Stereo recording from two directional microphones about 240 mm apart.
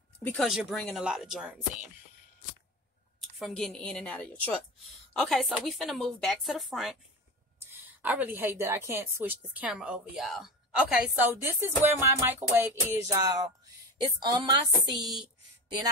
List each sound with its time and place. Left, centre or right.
0.2 s a woman's voice: centre
3.2 s a woman's voice: centre
8.0 s a woman's voice: centre